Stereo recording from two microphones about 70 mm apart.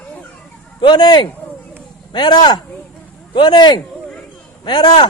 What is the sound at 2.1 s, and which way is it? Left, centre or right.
Speech, left.